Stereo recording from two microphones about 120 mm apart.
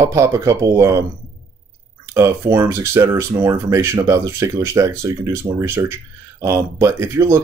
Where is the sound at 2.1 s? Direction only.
25° right (ahead or behind).